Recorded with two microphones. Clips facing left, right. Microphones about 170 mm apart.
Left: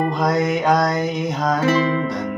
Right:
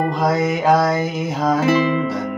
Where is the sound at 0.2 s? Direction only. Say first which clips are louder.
Right 1 dB; centre (ahead or behind).